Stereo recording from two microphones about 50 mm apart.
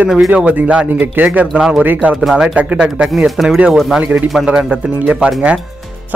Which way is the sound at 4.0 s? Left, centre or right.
Right.